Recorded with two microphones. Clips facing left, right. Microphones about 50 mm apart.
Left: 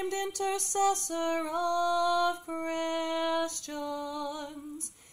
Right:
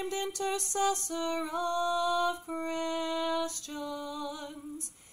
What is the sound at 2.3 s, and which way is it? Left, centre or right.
Music, left.